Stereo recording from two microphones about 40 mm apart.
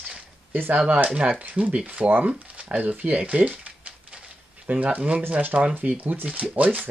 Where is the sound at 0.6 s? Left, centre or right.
Right.